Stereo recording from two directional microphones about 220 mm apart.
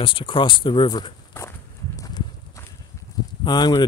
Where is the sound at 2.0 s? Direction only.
15° left (ahead or behind).